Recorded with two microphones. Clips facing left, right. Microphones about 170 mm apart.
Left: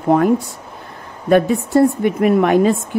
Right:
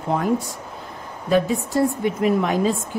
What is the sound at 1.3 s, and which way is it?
A woman's voice, 60° left (ahead or behind).